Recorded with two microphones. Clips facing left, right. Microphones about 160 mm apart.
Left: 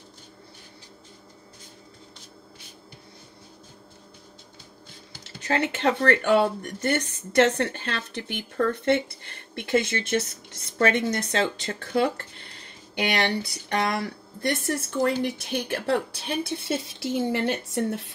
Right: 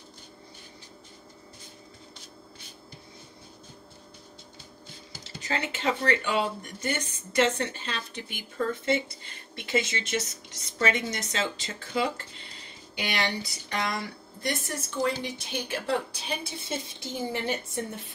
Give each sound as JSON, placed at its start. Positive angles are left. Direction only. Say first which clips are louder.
{"t": 5.4, "sound": "a woman's voice", "louder": "left 6 dB", "side_deg": 60}